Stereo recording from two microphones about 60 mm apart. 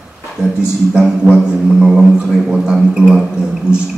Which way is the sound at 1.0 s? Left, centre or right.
Centre.